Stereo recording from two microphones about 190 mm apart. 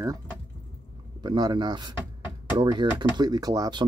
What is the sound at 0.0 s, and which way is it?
Speech, 20° right (ahead or behind).